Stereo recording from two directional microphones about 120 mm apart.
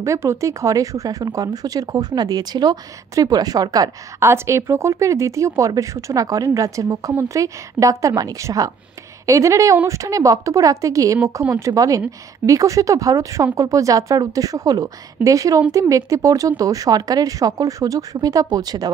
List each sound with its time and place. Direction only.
0.0 s speech: 25° right (ahead or behind)